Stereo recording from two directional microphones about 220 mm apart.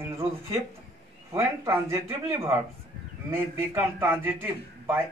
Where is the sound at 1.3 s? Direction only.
10° right (ahead or behind).